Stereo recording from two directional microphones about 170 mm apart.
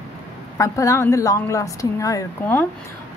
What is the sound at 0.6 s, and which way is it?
A woman's voice, 20° left (ahead or behind).